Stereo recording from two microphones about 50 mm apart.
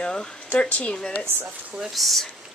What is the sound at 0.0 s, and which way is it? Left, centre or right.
Speech, centre.